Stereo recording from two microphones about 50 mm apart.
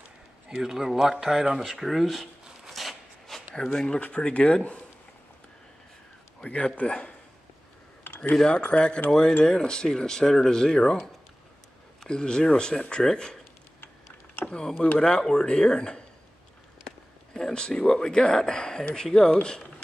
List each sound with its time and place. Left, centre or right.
0.5 s speech: centre
1.7 s a sound: centre
4.0 s a man's voice: left
6.4 s a man's voice: left
8.4 s a man's voice: centre
12.1 s speech: centre
15.0 s speech: centre
17.3 s speech: centre